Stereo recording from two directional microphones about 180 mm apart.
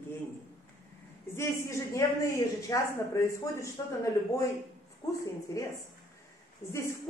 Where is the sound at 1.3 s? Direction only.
15° left (ahead or behind).